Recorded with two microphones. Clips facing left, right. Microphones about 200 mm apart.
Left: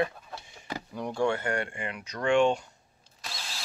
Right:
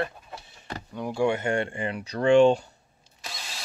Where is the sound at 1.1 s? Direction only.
15° right (ahead or behind); by 2.6 s 30° right (ahead or behind).